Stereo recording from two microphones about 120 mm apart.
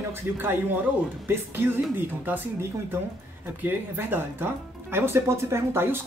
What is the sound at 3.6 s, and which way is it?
Speech, 15° right (ahead or behind).